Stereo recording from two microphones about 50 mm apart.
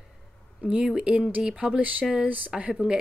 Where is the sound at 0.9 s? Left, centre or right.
Right.